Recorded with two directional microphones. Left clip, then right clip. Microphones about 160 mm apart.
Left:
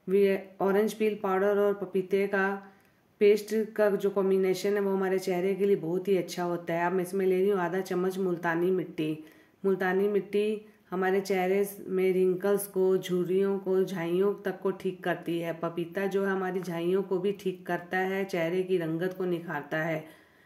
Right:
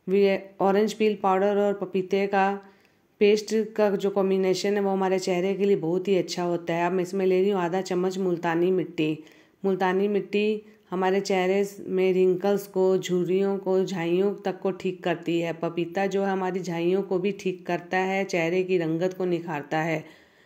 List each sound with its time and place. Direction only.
0.1 s speech: 25° right (ahead or behind)